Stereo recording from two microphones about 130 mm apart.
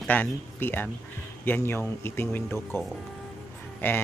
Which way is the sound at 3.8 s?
15° left (ahead or behind).